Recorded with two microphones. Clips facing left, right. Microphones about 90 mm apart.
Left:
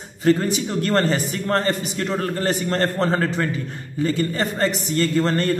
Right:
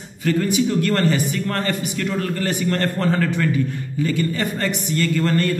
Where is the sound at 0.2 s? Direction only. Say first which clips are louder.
Left 1 dB; 35° left (ahead or behind).